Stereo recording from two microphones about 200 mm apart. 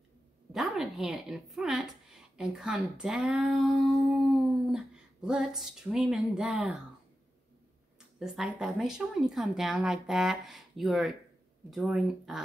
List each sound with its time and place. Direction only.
0.5 s a woman's voice: centre (ahead or behind)
8.2 s a woman's voice: centre (ahead or behind)